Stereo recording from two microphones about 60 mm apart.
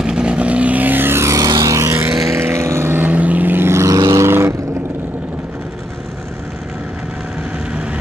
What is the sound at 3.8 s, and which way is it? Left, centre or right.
Vehicle, right.